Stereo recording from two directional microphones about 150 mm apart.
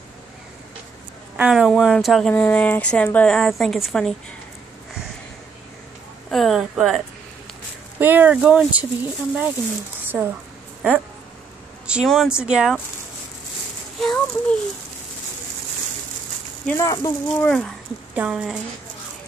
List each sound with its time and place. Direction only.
1.3 s a woman's voice: 10° right (ahead or behind)
6.3 s speech: centre (ahead or behind)
8.0 s speech: 10° right (ahead or behind)
11.9 s speech: centre (ahead or behind)
13.9 s a sound: 5° left (ahead or behind)
16.6 s speech: 20° left (ahead or behind)
17.4 s speech: 5° left (ahead or behind)
18.1 s speech: 5° right (ahead or behind)